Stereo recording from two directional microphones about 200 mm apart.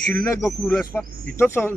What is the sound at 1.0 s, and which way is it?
Speech, 10° left (ahead or behind).